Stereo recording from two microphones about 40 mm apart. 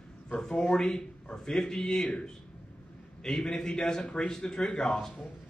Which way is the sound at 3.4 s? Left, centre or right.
Left.